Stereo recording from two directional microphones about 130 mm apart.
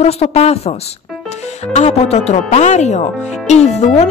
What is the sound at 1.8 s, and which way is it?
Speech, 60° left (ahead or behind).